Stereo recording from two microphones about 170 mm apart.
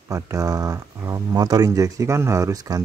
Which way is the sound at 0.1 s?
20° right (ahead or behind).